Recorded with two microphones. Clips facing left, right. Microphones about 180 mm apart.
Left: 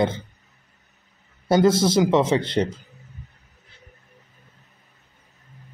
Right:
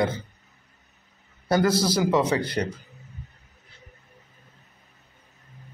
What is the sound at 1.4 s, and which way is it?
A man's voice, 25° left (ahead or behind).